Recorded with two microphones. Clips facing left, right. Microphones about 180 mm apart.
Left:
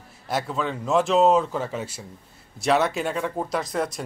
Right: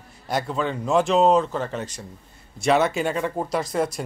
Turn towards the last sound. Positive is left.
turn(degrees=0)  # may be behind; listen again after turning